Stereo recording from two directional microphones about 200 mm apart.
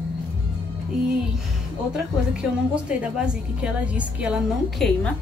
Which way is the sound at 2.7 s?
5° right (ahead or behind).